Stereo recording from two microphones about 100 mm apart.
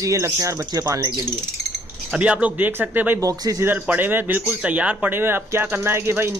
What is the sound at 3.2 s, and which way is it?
Speech, 35° right (ahead or behind).